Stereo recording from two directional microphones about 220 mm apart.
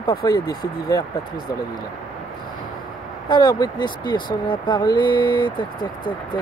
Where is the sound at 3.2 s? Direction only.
20° left (ahead or behind).